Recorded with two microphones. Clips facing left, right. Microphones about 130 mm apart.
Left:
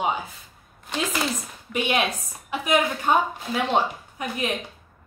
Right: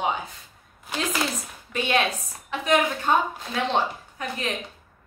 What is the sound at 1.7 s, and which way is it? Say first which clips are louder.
A woman's voice: even; 15° left (ahead or behind).